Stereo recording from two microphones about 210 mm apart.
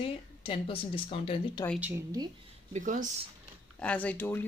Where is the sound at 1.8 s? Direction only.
15° right (ahead or behind).